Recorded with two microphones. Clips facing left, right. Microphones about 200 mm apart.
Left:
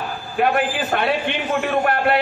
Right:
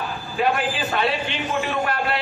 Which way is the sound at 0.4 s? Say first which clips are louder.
Left 3 dB; 60° left (ahead or behind).